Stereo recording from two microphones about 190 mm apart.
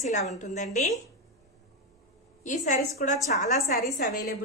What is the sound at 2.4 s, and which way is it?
A woman's voice, 40° left (ahead or behind).